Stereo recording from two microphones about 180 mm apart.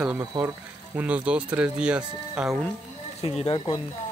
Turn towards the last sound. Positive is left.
turn(degrees=30)  # may be behind; listen again after turning